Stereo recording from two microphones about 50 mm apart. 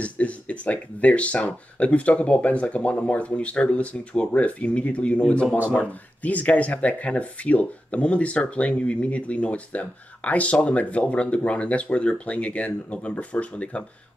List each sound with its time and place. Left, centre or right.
0.0 s speech: left